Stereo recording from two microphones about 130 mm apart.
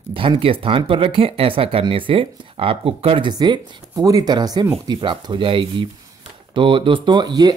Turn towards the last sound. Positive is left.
turn(degrees=-35)  # may be behind; listen again after turning